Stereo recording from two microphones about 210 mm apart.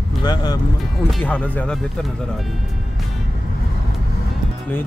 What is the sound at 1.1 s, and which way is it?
Speech, 5° left (ahead or behind).